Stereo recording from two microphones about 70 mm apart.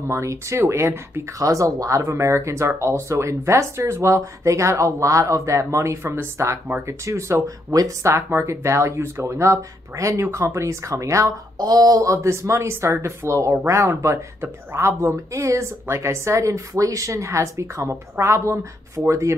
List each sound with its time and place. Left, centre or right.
0.1 s speech: right
1.4 s a woman's voice: right
11.5 s a woman's voice: right